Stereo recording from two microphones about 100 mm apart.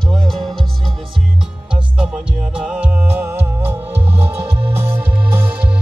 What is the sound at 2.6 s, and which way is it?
Music, 10° right (ahead or behind).